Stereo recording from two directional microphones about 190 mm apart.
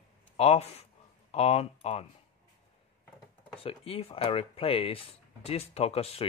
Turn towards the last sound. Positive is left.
turn(degrees=30)  # may be behind; listen again after turning